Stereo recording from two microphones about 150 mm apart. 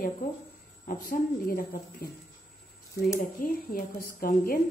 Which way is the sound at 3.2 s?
70° left (ahead or behind).